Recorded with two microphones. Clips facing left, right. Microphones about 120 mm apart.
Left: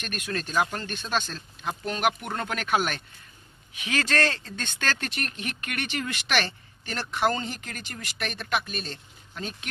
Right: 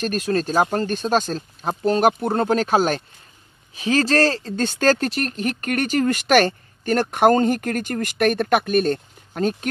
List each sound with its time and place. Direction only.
0.0 s speech: 35° right (ahead or behind)